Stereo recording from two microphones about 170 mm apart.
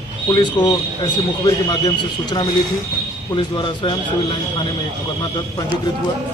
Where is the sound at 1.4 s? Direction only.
25° left (ahead or behind).